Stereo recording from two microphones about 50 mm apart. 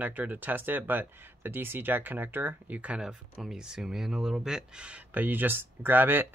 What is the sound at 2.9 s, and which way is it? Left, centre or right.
Speech, centre.